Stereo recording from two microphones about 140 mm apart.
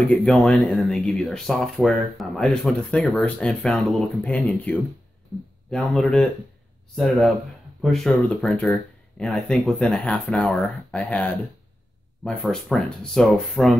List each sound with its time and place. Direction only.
0.1 s speech: 5° left (ahead or behind)